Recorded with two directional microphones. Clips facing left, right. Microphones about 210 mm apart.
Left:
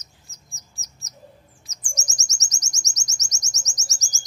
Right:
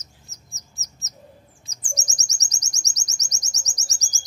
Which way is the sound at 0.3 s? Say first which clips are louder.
Right 2 dB; 20° right (ahead or behind).